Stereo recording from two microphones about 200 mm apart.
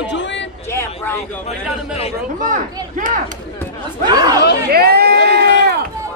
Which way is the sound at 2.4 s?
40° right (ahead or behind).